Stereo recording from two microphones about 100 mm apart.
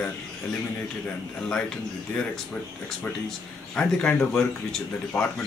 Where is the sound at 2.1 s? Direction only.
10° left (ahead or behind).